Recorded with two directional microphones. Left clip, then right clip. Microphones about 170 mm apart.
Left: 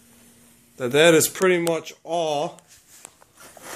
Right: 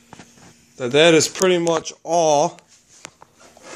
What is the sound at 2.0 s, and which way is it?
Speech, 45° right (ahead or behind).